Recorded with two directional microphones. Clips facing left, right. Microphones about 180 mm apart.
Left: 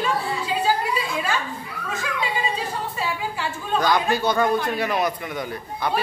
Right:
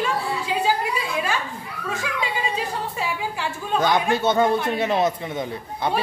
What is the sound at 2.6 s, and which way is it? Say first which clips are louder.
A woman's voice: right 1 dB; 15° right (ahead or behind).